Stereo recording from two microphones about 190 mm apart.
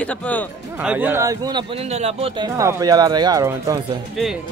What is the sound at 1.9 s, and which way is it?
Speech, 35° right (ahead or behind).